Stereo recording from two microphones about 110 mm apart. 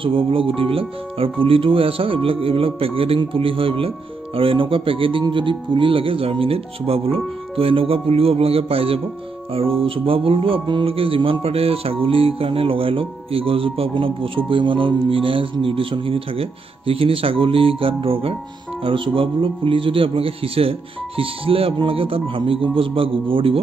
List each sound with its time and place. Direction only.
0.0 s music: 55° right (ahead or behind)
4.4 s speech: 55° right (ahead or behind)
5.2 s music: 50° right (ahead or behind)
18.9 s speech: 50° right (ahead or behind)
21.2 s music: 60° right (ahead or behind)